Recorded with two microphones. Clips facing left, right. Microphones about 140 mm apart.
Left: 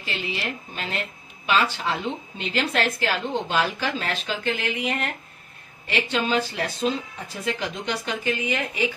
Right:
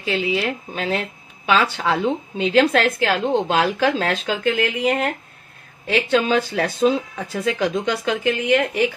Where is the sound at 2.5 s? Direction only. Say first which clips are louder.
Right 8 dB; 75° right (ahead or behind).